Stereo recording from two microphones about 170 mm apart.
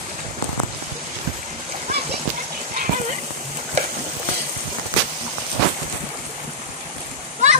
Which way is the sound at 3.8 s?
40° right (ahead or behind).